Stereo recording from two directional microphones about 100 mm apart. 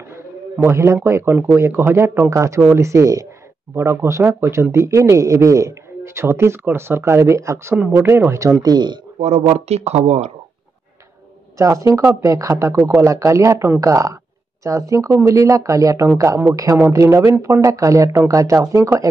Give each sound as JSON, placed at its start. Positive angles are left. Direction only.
{"t": 0.6, "sound": "speech", "side_deg": -25}
{"t": 8.6, "sound": "speech", "side_deg": -45}
{"t": 9.4, "sound": "speech", "side_deg": -80}
{"t": 11.5, "sound": "speech", "side_deg": -35}